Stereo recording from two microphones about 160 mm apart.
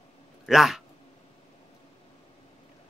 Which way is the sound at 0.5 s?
Centre (ahead or behind).